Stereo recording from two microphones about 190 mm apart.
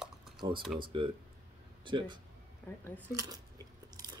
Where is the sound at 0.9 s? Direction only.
25° right (ahead or behind).